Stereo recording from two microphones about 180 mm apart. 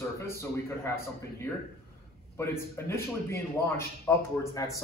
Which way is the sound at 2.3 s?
15° left (ahead or behind).